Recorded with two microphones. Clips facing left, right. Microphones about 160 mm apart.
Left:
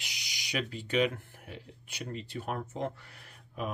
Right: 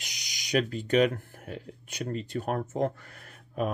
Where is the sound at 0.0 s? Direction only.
45° right (ahead or behind).